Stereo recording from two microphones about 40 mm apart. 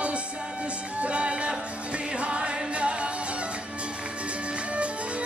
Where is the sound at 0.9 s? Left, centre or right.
Right.